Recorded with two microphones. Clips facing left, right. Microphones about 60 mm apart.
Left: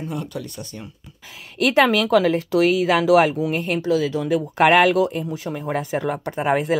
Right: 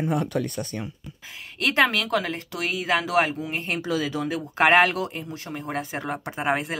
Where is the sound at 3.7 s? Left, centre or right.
Right.